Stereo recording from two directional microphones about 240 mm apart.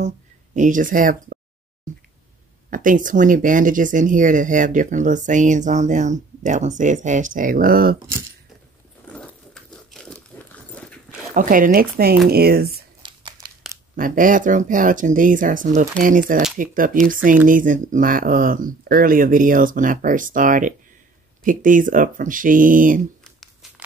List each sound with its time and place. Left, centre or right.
0.6 s speech: right
2.7 s speech: right
9.1 s dog: centre
11.3 s speech: right
13.0 s crumpling: centre
13.9 s speech: right
23.2 s a sound: centre